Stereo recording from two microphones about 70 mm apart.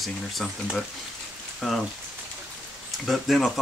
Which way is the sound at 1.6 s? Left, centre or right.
Centre.